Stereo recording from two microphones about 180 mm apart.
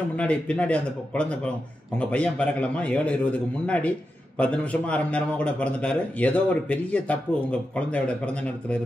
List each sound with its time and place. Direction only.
0.1 s a man's voice: 5° left (ahead or behind)